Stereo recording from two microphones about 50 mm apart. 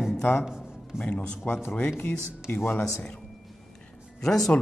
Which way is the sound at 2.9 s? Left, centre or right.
Centre.